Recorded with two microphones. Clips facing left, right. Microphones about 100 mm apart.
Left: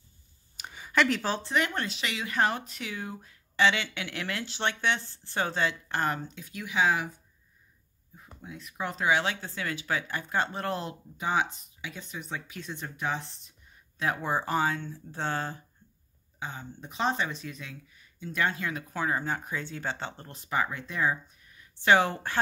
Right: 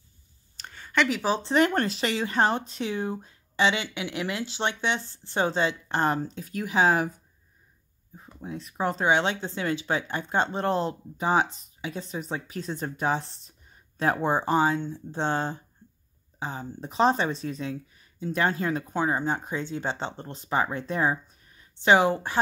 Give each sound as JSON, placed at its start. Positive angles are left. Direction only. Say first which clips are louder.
{"t": 0.6, "sound": "a sound", "louder": "right 1 dB", "side_deg": 10}
{"t": 1.4, "sound": "speech", "louder": "right 7 dB", "side_deg": -35}
{"t": 8.2, "sound": "speech", "louder": "right 7 dB", "side_deg": -30}
{"t": 21.7, "sound": "speech", "louder": "right 3 dB", "side_deg": -20}